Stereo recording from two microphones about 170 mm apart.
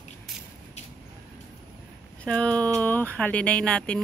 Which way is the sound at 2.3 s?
5° left (ahead or behind).